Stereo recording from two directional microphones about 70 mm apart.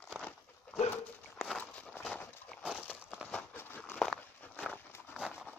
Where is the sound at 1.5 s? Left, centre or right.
Centre.